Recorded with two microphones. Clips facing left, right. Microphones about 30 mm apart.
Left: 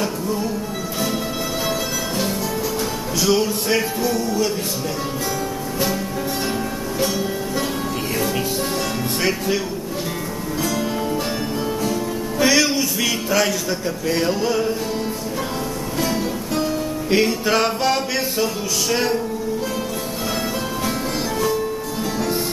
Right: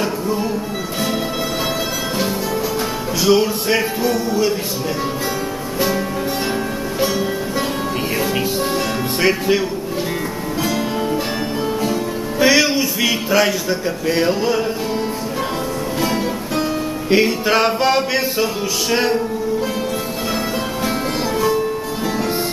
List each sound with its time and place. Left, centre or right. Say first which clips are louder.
0.0 s music: right 3 dB; centre
3.2 s music: right 4 dB; centre
10.6 s music: right 2 dB; centre
16.0 s music: right 1 dB; centre
21.4 s music: right 4 dB; centre